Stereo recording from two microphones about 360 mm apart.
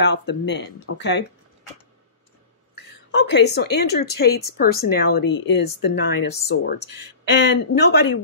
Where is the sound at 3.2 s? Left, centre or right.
Left.